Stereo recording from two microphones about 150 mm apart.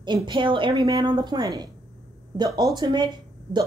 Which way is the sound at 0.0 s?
30° right (ahead or behind).